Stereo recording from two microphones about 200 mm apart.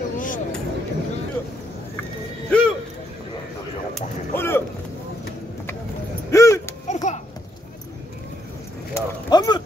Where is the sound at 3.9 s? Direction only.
10° left (ahead or behind).